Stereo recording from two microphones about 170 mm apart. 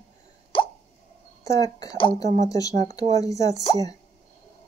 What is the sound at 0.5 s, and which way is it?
Plop, 30° left (ahead or behind).